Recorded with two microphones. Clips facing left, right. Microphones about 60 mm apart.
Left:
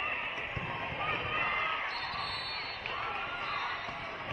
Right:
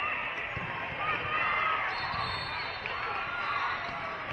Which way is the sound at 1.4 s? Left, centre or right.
Centre.